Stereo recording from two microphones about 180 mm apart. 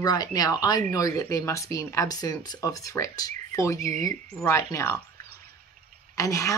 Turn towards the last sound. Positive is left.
turn(degrees=15)  # may be behind; listen again after turning